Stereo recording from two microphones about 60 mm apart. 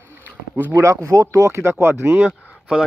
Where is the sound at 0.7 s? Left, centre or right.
Right.